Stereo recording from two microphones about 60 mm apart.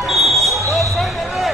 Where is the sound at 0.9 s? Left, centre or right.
Centre.